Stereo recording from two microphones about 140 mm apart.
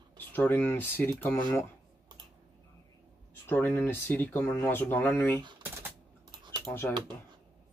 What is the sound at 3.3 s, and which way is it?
Speech, 15° left (ahead or behind).